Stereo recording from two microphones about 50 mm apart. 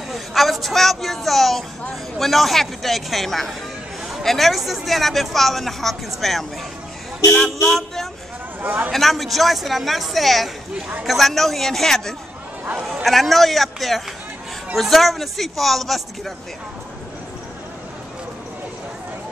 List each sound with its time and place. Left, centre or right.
0.1 s a woman's voice: centre
7.2 s speech: centre
8.6 s a man's voice: right
8.9 s a woman's voice: centre
12.6 s speech: right
13.0 s a woman's voice: centre